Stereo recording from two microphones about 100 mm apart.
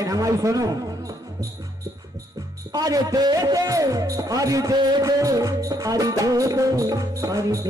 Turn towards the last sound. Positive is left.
turn(degrees=-35)  # may be behind; listen again after turning